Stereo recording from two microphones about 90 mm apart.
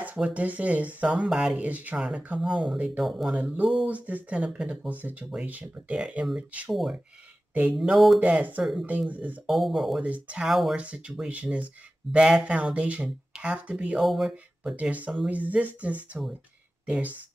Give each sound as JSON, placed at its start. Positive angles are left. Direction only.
{"t": 0.0, "sound": "speech", "side_deg": -15}
{"t": 3.3, "sound": "speech", "side_deg": -15}
{"t": 6.7, "sound": "speech", "side_deg": 0}
{"t": 8.2, "sound": "speech", "side_deg": -15}
{"t": 9.5, "sound": "speech", "side_deg": 0}
{"t": 10.0, "sound": "speech", "side_deg": -15}
{"t": 10.5, "sound": "speech", "side_deg": -5}
{"t": 10.8, "sound": "speech", "side_deg": -15}
{"t": 13.9, "sound": "speech", "side_deg": -5}
{"t": 14.3, "sound": "speech", "side_deg": -15}